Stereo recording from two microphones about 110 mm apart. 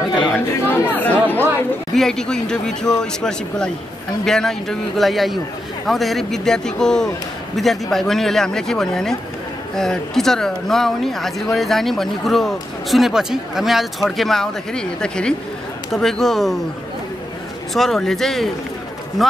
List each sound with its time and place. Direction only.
0.7 s chatter: 15° left (ahead or behind)
2.0 s speech: 5° left (ahead or behind)
17.7 s speech: 5° left (ahead or behind)